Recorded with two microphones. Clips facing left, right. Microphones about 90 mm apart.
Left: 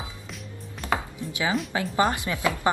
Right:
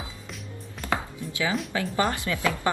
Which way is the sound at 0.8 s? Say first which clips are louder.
Left 1 dB; 20° left (ahead or behind).